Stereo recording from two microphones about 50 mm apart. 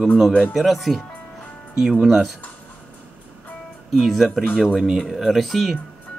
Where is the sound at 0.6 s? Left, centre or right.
Centre.